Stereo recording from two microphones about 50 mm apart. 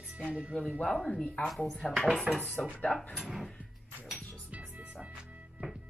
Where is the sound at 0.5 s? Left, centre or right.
Centre.